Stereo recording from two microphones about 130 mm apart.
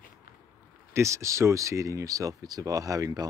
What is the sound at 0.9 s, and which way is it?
Speech, 20° right (ahead or behind).